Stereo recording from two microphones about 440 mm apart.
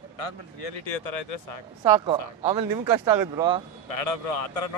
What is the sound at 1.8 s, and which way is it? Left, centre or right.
Speech, centre.